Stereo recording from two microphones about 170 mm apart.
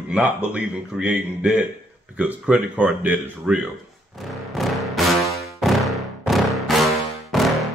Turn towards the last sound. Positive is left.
turn(degrees=0)  # may be behind; listen again after turning